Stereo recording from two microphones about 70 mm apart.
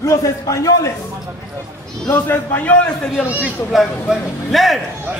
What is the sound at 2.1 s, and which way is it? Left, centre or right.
Speech, left.